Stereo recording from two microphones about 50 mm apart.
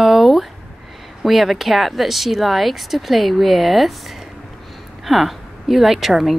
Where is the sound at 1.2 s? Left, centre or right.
Centre.